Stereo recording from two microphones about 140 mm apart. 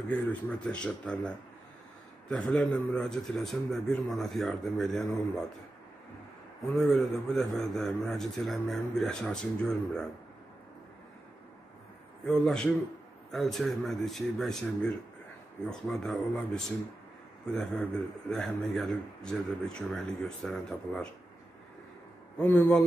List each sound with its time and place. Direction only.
0.1 s a man's voice: 10° left (ahead or behind)
6.6 s a man's voice: centre (ahead or behind)
12.3 s a man's voice: 5° left (ahead or behind)
22.4 s speech: 10° left (ahead or behind)